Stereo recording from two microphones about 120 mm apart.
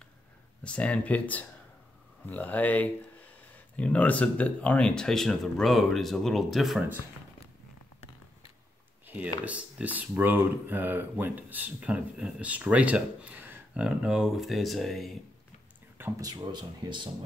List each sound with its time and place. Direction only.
0.7 s speech: 10° left (ahead or behind)
9.0 s a sound: 15° right (ahead or behind)
9.4 s speech: 10° right (ahead or behind)
16.2 s speech: 35° right (ahead or behind)